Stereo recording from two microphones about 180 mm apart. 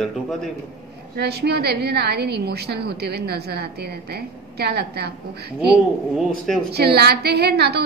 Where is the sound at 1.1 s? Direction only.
65° right (ahead or behind).